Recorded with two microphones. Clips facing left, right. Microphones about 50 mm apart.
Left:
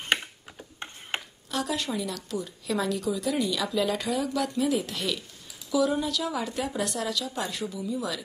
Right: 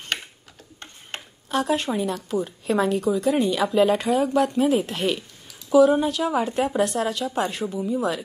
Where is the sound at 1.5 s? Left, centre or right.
Right.